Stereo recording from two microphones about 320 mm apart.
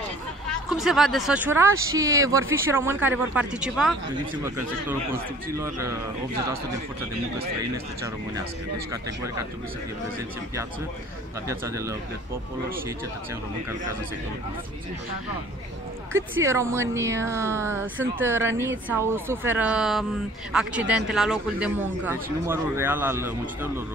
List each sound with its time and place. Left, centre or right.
0.7 s speech: centre
11.4 s speech: centre
16.1 s speech: right
16.4 s speech: centre